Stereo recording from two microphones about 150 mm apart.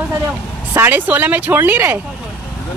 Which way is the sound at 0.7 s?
15° right (ahead or behind).